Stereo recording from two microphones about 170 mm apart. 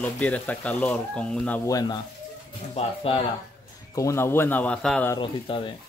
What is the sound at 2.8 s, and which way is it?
Speech, 35° left (ahead or behind).